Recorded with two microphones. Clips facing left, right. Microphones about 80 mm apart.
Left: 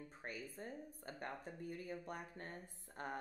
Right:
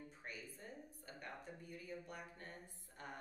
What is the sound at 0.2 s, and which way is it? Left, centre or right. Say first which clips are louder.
A woman's voice: left 6 dB; left.